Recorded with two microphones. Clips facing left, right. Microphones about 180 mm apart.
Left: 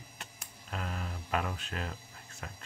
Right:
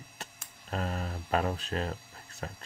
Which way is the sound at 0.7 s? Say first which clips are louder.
Right 5 dB; 40° right (ahead or behind).